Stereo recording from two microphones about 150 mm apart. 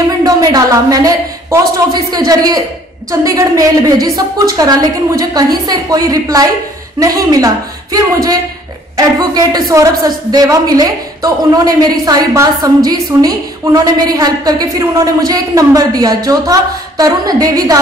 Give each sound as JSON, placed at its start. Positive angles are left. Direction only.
{"t": 0.2, "sound": "a woman's voice", "side_deg": -25}